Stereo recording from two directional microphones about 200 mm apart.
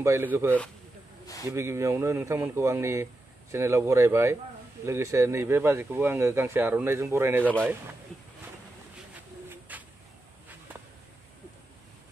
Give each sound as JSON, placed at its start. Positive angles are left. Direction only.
{"t": 0.0, "sound": "speech", "side_deg": -10}
{"t": 1.2, "sound": "a sound", "side_deg": 15}
{"t": 1.5, "sound": "speech", "side_deg": -15}
{"t": 9.1, "sound": "bird", "side_deg": -10}